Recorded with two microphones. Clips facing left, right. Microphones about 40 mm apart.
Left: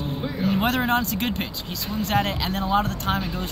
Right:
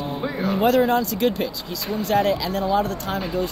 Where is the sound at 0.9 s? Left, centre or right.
Left.